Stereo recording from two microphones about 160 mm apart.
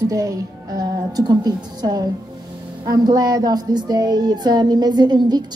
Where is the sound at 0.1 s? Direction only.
20° right (ahead or behind).